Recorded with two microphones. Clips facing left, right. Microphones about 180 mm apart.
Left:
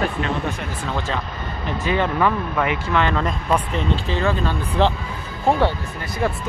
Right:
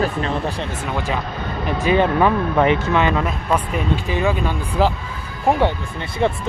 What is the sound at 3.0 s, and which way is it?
Speech, 10° right (ahead or behind).